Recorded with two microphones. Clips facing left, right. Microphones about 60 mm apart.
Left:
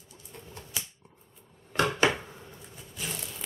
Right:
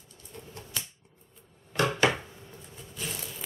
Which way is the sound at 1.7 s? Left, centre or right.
Left.